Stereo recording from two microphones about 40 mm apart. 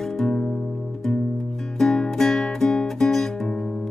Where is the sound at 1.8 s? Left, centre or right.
Centre.